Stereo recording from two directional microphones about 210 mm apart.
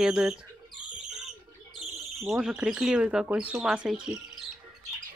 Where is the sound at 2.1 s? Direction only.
Centre (ahead or behind).